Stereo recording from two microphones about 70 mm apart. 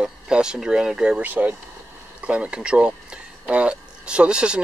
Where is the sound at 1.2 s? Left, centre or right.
Right.